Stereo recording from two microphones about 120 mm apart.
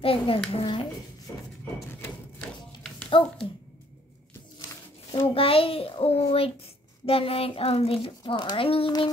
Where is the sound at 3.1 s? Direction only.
45° left (ahead or behind).